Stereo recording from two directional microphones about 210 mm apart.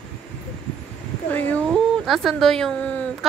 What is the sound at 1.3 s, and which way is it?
A woman's voice, 10° left (ahead or behind).